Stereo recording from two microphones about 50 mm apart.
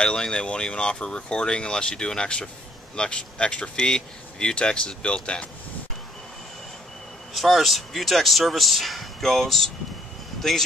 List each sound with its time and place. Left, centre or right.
0.0 s speech: centre
7.3 s speech: centre